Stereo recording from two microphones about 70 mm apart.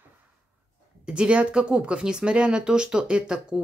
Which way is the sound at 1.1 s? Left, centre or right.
Centre.